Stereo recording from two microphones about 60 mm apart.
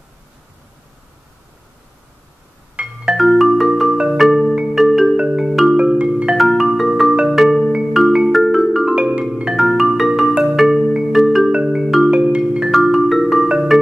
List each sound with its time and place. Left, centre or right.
2.7 s music: centre
3.2 s marimba: centre
3.9 s marimba: centre
4.6 s music: centre
5.1 s music: centre
5.8 s marimba: centre
6.3 s marimba: centre
7.8 s music: centre
9.2 s marimba: centre
9.7 s music: centre
10.4 s marimba: centre
11.5 s music: centre
12.7 s music: centre